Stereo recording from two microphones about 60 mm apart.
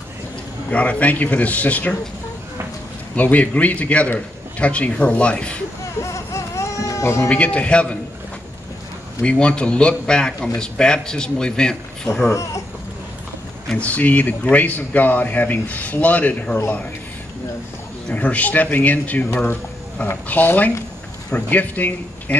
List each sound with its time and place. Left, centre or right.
0.7 s a man's voice: left
3.2 s a man's voice: left
6.1 s a sound: left
7.0 s speech: left
7.2 s a man's voice: left
9.2 s a man's voice: centre
12.3 s speech: left
13.7 s a man's voice: left
18.1 s a man's voice: left